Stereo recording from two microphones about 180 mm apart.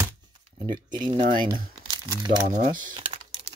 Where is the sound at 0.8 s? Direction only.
25° right (ahead or behind).